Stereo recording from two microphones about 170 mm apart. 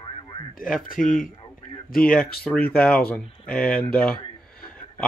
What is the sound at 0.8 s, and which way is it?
Speech, 50° left (ahead or behind).